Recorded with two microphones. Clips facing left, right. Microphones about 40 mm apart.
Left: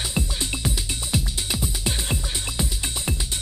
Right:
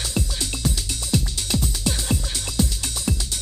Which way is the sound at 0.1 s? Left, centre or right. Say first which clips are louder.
Even; centre.